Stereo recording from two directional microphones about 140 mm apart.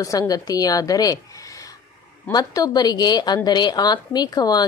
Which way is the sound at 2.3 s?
25° left (ahead or behind).